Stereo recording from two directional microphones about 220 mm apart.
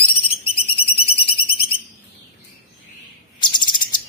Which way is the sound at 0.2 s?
25° left (ahead or behind).